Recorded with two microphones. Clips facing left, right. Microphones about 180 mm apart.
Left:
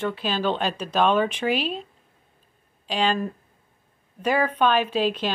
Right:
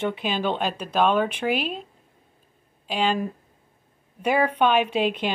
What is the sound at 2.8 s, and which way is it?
Speech, 10° right (ahead or behind).